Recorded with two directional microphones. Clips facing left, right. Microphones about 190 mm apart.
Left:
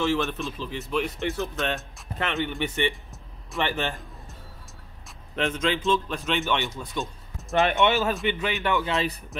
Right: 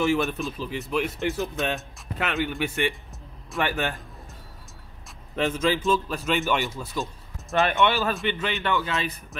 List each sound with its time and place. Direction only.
0.2 s a man's voice: centre (ahead or behind)
5.0 s a man's voice: 5° right (ahead or behind)
7.5 s speech: 20° left (ahead or behind)
9.3 s speech: centre (ahead or behind)